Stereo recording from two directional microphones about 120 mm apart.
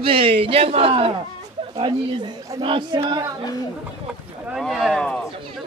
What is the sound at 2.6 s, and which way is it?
Speech, 45° right (ahead or behind).